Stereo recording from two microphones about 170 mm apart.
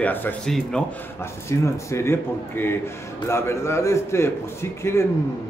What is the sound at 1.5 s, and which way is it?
A man's voice, 15° left (ahead or behind).